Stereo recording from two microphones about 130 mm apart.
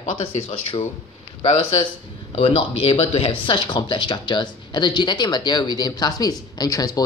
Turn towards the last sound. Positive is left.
turn(degrees=25)  # may be behind; listen again after turning